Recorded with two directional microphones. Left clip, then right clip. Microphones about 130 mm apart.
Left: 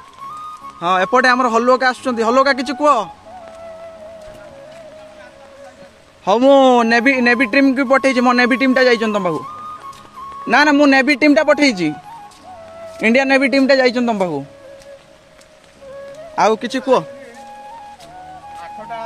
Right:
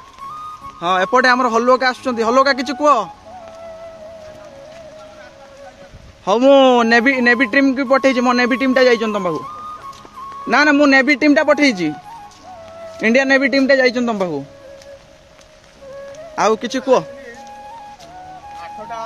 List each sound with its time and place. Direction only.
0.7 s a man's voice: 20° left (ahead or behind)
6.2 s a man's voice: 15° left (ahead or behind)
7.7 s a man's voice: 35° left (ahead or behind)
10.4 s a man's voice: 20° left (ahead or behind)
12.9 s a man's voice: 20° left (ahead or behind)
16.3 s a man's voice: 5° left (ahead or behind)
18.6 s a sound: centre (ahead or behind)